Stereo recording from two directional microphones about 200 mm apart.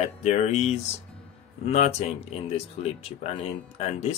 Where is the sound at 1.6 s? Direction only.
35° left (ahead or behind).